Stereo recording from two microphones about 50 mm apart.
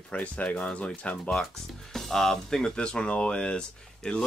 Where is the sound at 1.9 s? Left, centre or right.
Centre.